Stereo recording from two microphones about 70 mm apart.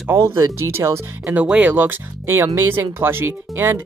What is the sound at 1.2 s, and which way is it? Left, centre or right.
Speech, right.